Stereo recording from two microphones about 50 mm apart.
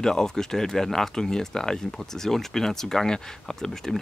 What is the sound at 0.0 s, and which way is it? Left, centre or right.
Speech, centre.